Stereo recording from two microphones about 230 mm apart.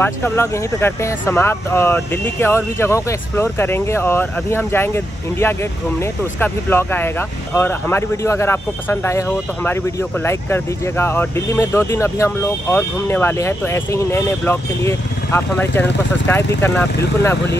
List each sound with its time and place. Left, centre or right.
0.0 s speech: centre
10.2 s speech: centre